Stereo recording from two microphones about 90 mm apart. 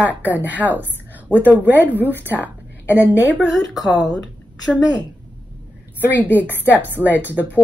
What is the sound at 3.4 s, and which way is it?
Speech, centre (ahead or behind).